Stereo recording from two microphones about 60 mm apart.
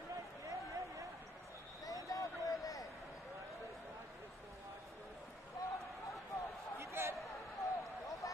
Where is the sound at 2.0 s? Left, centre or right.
Left.